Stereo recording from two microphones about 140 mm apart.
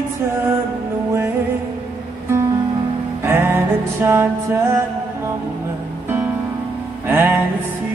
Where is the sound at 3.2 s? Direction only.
15° right (ahead or behind).